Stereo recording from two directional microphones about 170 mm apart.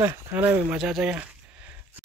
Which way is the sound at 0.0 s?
15° right (ahead or behind).